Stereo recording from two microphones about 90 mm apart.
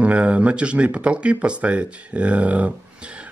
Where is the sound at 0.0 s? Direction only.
15° right (ahead or behind).